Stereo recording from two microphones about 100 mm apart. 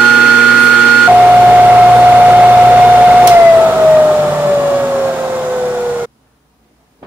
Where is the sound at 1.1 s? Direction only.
15° right (ahead or behind).